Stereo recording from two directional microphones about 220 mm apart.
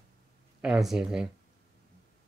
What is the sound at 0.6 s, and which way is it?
Speech, centre (ahead or behind).